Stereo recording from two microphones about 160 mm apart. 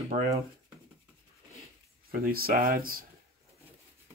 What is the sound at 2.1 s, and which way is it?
Speech, 65° right (ahead or behind).